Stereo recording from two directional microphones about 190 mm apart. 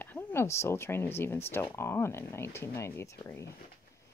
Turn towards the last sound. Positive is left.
turn(degrees=15)  # may be behind; listen again after turning